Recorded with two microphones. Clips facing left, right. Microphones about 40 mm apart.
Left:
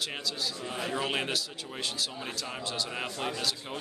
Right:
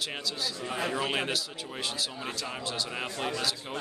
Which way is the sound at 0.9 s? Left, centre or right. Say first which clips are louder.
Left 1 dB; centre.